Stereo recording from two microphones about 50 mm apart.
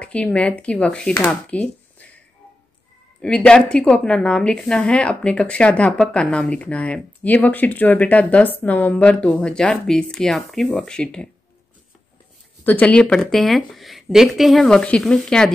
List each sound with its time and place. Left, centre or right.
0.0 s speech: left
3.2 s speech: left; by 10.9 s centre
10.9 s speech: centre
12.8 s speech: left; by 14.7 s centre
14.7 s speech: centre